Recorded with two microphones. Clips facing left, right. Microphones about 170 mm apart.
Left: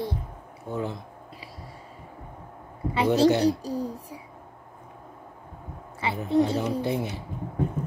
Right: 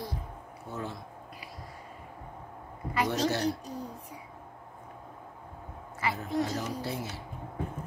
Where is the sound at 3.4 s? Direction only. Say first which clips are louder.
Left 8 dB; 35° left (ahead or behind).